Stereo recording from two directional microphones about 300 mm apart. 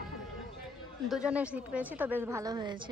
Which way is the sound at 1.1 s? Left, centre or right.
Centre.